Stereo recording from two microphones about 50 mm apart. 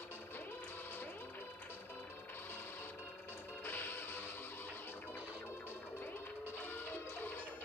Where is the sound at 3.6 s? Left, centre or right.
Left.